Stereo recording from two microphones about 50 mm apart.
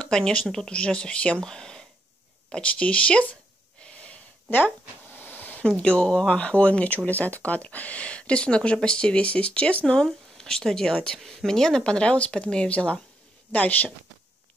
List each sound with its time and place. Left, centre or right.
0.0 s speech: centre
2.5 s speech: left
3.8 s snort: left
4.5 s a sound: left
5.6 s speech: centre
9.9 s speech: centre; by 13.9 s left